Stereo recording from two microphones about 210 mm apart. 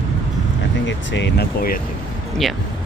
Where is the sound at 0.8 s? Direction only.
60° left (ahead or behind).